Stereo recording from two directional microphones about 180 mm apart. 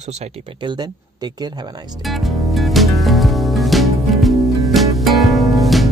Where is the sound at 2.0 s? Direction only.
Centre (ahead or behind).